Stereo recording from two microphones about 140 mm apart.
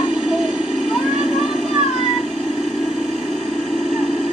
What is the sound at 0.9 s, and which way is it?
Children playing, 5° right (ahead or behind).